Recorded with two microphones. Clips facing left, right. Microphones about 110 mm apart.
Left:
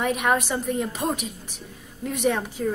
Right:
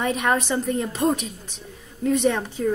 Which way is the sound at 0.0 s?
5° left (ahead or behind).